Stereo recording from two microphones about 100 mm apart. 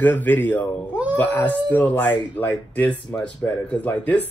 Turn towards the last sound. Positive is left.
turn(degrees=15)  # may be behind; listen again after turning